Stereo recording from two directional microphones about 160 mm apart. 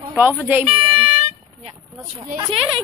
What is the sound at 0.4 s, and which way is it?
Speech, 10° right (ahead or behind).